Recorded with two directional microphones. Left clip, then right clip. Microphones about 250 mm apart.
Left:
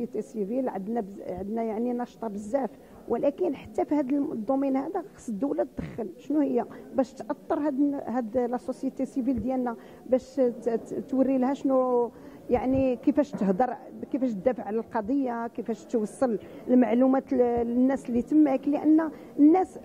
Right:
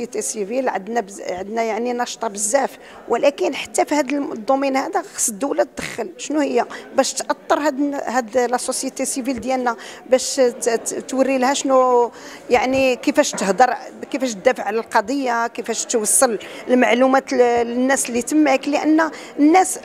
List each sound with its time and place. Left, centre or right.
0.6 s a woman's voice: centre